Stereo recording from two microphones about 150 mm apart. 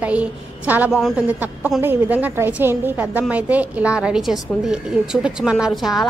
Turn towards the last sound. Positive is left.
turn(degrees=0)  # may be behind; listen again after turning